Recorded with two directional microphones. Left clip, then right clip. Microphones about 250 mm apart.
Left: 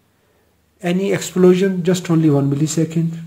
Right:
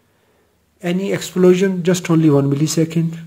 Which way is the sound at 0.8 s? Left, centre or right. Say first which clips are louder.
Left 2 dB; centre.